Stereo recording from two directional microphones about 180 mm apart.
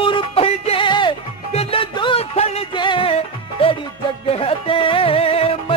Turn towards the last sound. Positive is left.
turn(degrees=30)  # may be behind; listen again after turning